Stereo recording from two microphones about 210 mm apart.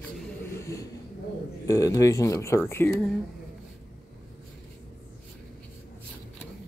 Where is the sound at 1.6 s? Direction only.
15° left (ahead or behind).